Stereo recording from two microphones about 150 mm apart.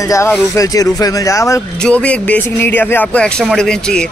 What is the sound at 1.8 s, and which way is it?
Speech, 5° left (ahead or behind).